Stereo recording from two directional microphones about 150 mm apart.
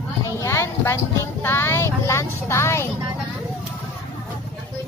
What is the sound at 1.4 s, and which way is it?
Speech, 15° left (ahead or behind).